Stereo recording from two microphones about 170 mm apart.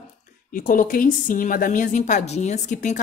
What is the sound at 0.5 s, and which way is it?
A woman's voice, 55° left (ahead or behind).